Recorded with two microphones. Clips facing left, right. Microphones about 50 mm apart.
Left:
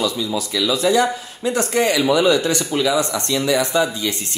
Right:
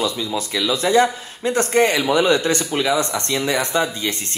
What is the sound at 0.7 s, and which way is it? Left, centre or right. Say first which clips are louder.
Speech: right 1 dB; right.